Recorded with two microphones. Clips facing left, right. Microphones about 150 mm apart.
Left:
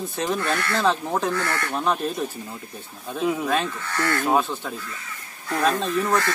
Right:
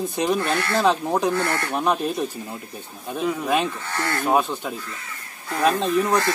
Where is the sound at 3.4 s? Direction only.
15° right (ahead or behind).